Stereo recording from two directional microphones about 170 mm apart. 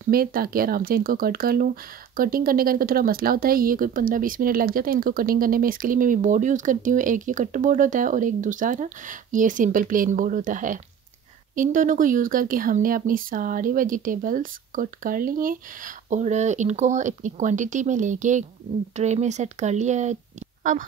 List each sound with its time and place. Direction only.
0.0 s speech: 60° right (ahead or behind)